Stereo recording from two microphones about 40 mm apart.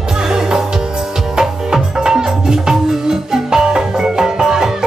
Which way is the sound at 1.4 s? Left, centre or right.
Centre.